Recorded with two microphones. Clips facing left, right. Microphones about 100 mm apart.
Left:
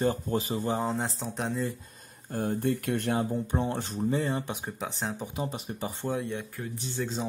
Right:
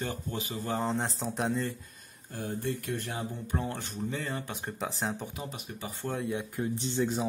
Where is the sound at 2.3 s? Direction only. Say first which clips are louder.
Left 6 dB; 50° left (ahead or behind).